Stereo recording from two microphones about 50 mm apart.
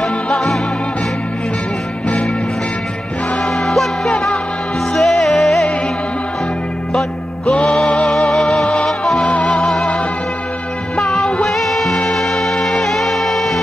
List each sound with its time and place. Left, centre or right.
0.0 s music: centre
3.4 s music: centre
7.4 s music: left
8.6 s music: left
11.0 s music: centre